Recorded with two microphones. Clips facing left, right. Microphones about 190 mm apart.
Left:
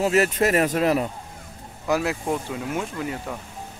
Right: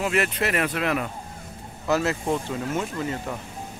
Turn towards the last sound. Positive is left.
turn(degrees=10)  # may be behind; listen again after turning